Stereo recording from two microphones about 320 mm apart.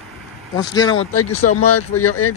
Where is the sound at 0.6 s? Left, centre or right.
Centre.